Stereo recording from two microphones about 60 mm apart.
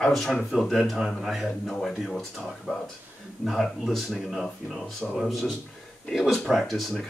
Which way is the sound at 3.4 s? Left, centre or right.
Centre.